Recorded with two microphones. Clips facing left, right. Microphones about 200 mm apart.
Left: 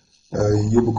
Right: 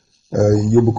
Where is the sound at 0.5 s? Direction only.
15° right (ahead or behind).